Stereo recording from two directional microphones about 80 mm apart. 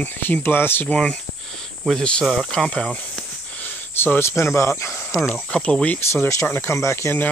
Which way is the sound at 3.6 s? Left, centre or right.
Left.